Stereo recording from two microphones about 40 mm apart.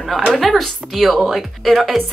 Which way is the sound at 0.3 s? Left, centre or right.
Centre.